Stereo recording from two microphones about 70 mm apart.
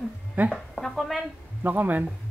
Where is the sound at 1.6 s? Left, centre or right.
Right.